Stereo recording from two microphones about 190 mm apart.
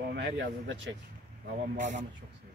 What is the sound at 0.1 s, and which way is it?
Speech, 70° right (ahead or behind).